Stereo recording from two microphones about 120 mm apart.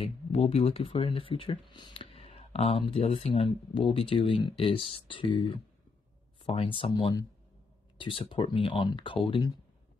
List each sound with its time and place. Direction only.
0.0 s speech: 55° left (ahead or behind)